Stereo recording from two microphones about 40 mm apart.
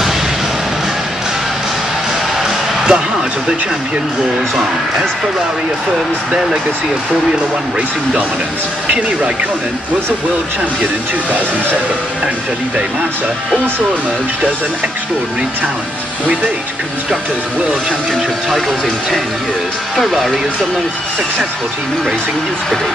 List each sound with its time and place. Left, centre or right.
2.9 s music: centre
20.0 s speech: centre